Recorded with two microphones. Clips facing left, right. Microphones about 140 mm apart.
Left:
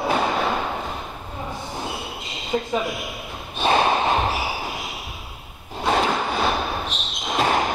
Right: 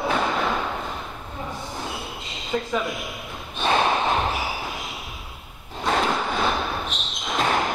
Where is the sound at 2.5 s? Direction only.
20° left (ahead or behind).